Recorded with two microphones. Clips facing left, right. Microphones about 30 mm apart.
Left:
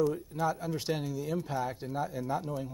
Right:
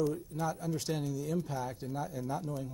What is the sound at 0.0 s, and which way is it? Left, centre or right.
Speech, left.